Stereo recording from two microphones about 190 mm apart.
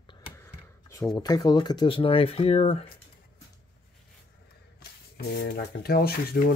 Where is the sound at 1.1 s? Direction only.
20° left (ahead or behind).